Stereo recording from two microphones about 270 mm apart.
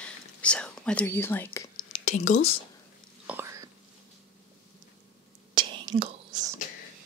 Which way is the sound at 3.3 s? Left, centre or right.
Centre.